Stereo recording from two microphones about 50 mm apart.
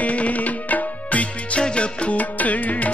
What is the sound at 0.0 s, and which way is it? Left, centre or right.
Music, left.